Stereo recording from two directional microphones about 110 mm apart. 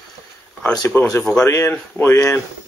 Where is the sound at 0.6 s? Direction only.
10° left (ahead or behind).